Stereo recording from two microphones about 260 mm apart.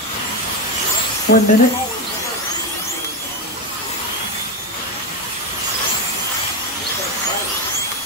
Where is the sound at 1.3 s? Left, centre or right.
Left.